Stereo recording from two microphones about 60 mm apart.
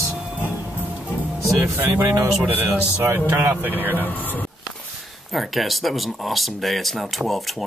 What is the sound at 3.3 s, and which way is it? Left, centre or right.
Speech, right.